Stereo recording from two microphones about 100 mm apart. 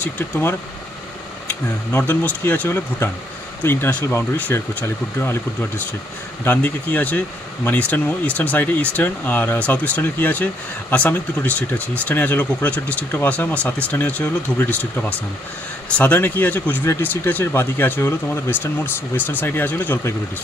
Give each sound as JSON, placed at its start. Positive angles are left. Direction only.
{"t": 0.0, "sound": "speech", "side_deg": 25}
{"t": 16.0, "sound": "speech", "side_deg": 15}